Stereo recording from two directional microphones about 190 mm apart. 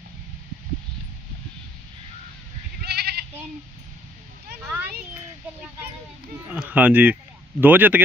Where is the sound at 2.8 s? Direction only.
55° right (ahead or behind).